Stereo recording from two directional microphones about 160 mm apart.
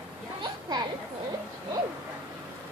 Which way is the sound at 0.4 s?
25° right (ahead or behind).